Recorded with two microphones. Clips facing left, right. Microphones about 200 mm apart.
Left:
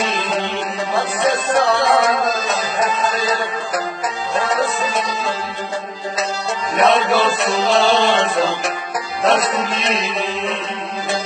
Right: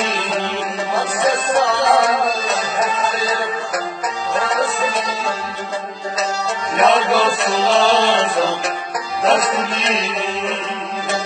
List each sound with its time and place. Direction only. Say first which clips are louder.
0.0 s music: even; centre (ahead or behind)
6.8 s music: even; centre (ahead or behind)